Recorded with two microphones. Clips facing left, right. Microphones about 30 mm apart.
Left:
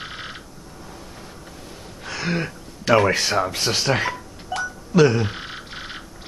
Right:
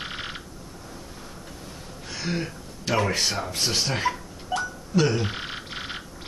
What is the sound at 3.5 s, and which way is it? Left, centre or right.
Speech, left.